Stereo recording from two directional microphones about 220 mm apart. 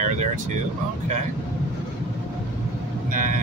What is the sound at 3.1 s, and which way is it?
Vehicle, 35° right (ahead or behind).